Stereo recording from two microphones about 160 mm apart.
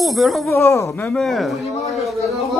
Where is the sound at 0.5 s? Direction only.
15° left (ahead or behind).